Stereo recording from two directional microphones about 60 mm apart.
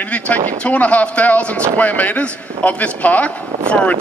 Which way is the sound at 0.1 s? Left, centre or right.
Left.